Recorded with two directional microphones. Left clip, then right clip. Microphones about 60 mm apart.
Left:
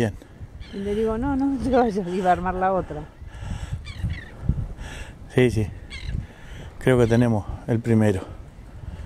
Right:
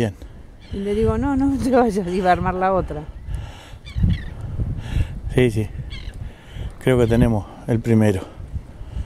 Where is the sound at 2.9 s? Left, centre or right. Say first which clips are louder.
Right 3 dB; centre.